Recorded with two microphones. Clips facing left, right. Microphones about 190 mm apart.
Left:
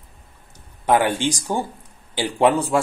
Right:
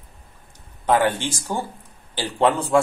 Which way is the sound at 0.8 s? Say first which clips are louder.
Left 1 dB; 15° left (ahead or behind).